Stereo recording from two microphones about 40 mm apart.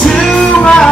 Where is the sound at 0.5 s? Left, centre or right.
Left.